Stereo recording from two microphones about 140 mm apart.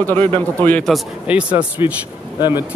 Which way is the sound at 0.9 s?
10° right (ahead or behind).